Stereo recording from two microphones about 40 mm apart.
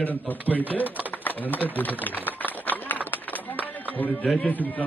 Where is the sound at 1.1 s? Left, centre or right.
Left.